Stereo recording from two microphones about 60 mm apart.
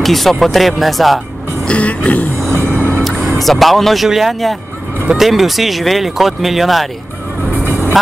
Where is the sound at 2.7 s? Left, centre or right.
Left.